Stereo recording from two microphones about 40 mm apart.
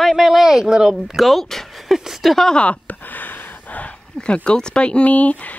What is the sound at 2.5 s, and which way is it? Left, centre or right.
Speech, left.